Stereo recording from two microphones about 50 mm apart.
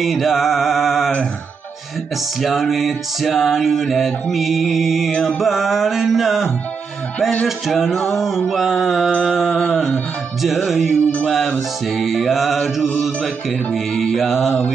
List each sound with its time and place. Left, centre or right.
0.0 s mantra: centre
2.4 s music: centre
9.5 s a sound: left
10.7 s music: centre